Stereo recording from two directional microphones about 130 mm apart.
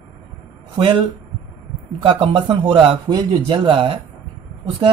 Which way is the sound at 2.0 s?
40° right (ahead or behind).